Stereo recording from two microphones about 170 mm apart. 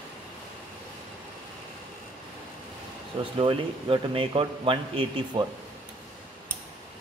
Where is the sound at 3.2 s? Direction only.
30° right (ahead or behind).